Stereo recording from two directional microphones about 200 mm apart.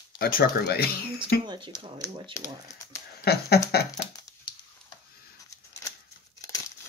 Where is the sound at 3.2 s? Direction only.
50° left (ahead or behind).